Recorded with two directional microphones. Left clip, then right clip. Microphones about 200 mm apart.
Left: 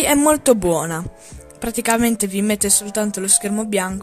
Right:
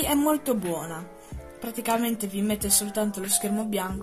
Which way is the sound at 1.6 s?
55° left (ahead or behind).